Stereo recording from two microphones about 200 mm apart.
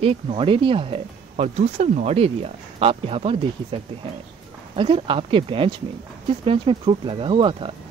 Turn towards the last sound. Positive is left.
turn(degrees=-25)  # may be behind; listen again after turning